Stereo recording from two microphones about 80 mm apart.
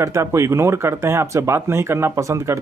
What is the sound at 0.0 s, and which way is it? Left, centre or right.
Speech, right.